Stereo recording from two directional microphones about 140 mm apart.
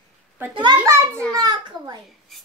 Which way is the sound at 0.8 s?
20° right (ahead or behind).